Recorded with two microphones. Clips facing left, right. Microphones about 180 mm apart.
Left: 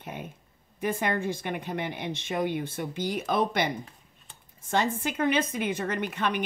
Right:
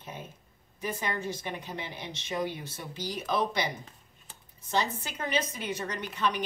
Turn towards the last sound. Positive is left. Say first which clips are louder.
# left 2 dB
turn(degrees=55)  # may be behind; listen again after turning